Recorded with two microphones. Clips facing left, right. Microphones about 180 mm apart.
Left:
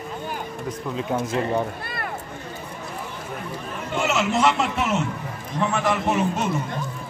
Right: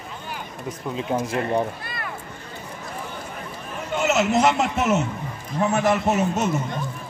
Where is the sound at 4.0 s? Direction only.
40° right (ahead or behind).